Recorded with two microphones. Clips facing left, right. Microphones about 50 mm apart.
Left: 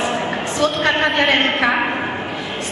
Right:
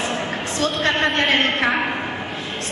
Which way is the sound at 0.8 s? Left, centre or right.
Centre.